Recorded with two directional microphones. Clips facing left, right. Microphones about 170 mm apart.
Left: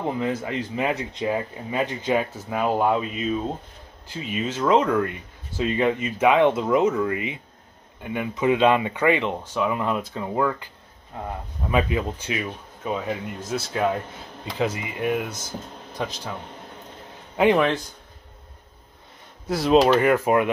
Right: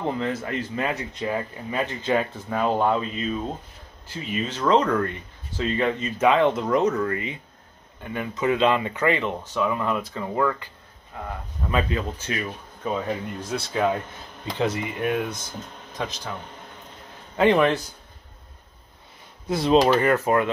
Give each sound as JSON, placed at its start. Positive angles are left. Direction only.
{"t": 0.0, "sound": "speech", "side_deg": 10}
{"t": 17.4, "sound": "speech", "side_deg": 5}
{"t": 19.4, "sound": "speech", "side_deg": 0}